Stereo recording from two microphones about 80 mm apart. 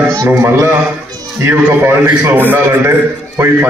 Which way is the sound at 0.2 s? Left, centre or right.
Right.